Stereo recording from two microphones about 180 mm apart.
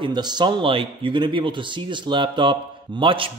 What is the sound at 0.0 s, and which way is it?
A man's voice, 25° right (ahead or behind).